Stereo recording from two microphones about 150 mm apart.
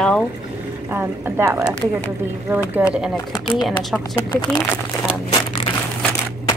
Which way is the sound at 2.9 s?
5° right (ahead or behind).